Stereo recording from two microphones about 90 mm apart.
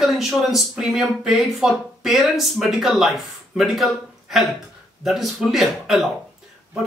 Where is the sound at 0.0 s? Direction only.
Centre (ahead or behind).